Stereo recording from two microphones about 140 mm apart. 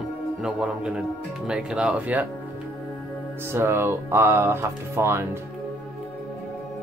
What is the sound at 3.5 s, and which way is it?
Speech, 20° right (ahead or behind).